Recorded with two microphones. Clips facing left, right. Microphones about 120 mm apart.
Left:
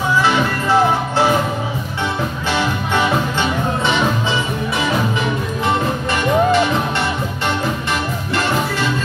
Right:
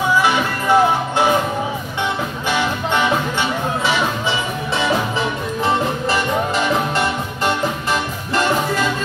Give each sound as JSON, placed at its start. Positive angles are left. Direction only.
{"t": 0.2, "sound": "music", "side_deg": -15}